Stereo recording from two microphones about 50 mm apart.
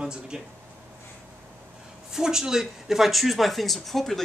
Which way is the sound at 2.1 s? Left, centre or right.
Centre.